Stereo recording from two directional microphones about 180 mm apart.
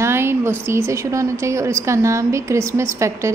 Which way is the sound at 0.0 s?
15° right (ahead or behind).